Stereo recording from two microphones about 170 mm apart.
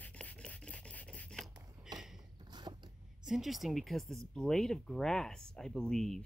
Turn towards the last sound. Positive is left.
turn(degrees=5)  # may be behind; listen again after turning